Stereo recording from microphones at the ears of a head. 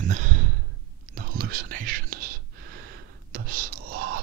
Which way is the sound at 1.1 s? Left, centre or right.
Right.